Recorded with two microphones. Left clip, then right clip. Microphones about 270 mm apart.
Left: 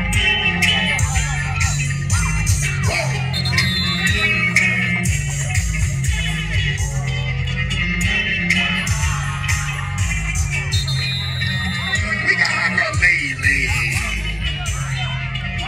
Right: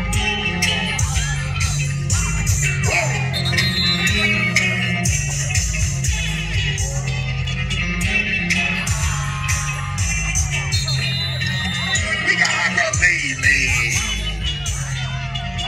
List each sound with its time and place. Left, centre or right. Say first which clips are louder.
0.2 s music: left 4 dB; centre
2.6 s music: right 3 dB; right
8.0 s music: right 1 dB; right
11.9 s music: left 1 dB; right